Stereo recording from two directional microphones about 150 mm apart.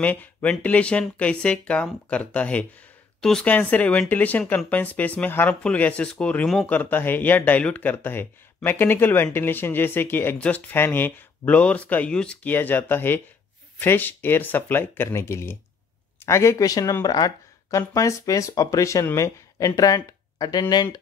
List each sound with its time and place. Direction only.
0.0 s speech: 10° left (ahead or behind); by 21.0 s 25° left (ahead or behind)